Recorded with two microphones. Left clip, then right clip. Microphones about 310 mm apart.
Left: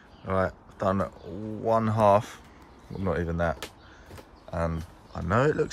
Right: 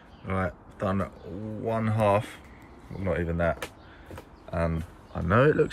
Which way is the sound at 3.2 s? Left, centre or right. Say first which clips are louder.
Right 1 dB; centre.